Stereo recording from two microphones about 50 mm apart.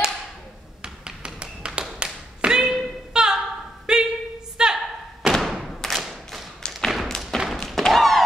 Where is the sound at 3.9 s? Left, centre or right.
Centre.